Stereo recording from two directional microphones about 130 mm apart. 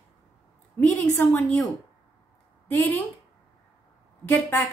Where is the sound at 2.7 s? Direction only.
15° left (ahead or behind).